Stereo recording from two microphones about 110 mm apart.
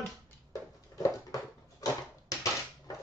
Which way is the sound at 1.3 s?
30° left (ahead or behind).